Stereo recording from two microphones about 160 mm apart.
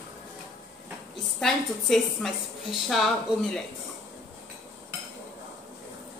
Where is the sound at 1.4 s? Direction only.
Centre (ahead or behind).